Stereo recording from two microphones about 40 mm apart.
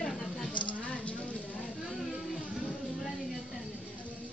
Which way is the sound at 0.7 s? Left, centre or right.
Left.